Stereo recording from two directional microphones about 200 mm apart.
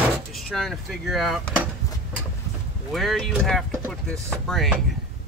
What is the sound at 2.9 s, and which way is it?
Speech, centre (ahead or behind).